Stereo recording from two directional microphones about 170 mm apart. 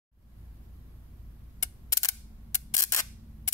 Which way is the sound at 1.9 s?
20° left (ahead or behind).